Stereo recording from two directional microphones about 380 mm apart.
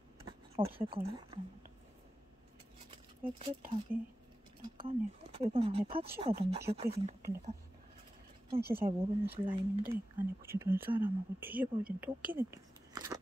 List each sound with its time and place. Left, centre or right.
0.7 s speech: centre
3.3 s speech: centre
8.5 s speech: right
9.8 s speech: centre
12.0 s a sound: centre